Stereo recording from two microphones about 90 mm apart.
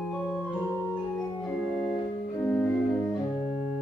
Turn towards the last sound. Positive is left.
turn(degrees=15)  # may be behind; listen again after turning